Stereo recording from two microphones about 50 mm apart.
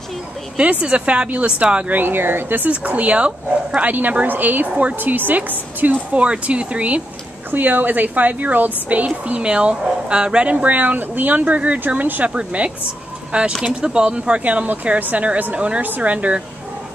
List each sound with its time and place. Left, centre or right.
0.6 s speech: right
2.0 s speech: right
2.7 s a woman's voice: right
7.5 s a woman's voice: right
12.4 s speech: right